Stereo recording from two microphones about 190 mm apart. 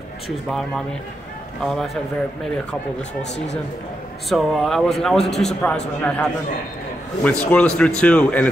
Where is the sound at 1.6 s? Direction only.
Centre (ahead or behind).